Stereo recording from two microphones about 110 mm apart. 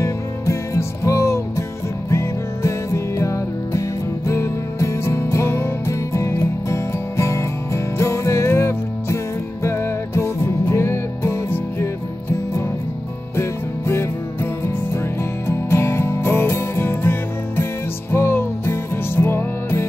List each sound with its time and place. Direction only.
0.0 s music: 25° left (ahead or behind)